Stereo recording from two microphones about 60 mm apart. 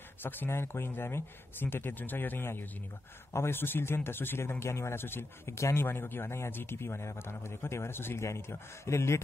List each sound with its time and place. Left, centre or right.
0.2 s speech: left
5.6 s a man's voice: left
5.9 s a man's voice: left
8.2 s a man's voice: left